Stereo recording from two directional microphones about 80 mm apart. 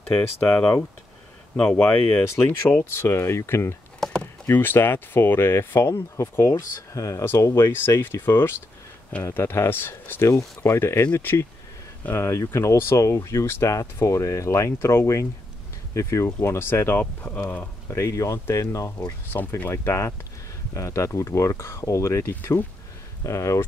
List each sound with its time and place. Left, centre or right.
0.1 s speech: centre; by 3.7 s left
4.0 s chop: centre
4.5 s speech: left
5.8 s speech: left
6.7 s speech: left
16.5 s speech: left
17.8 s speech: left
19.3 s speech: left
22.3 s speech: left
23.2 s speech: left